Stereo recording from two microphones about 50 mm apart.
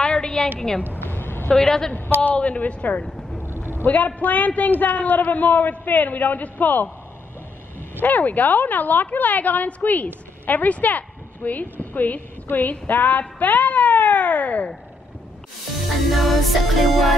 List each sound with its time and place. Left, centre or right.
0.0 s a sound: centre
0.6 s a woman's voice: centre
1.0 s a sound: left
1.5 s a woman's voice: centre
2.2 s speech: left
3.4 s vehicle: right
3.8 s a woman's voice: left
8.0 s a woman's voice: left
13.2 s a sound: left
16.1 s music: centre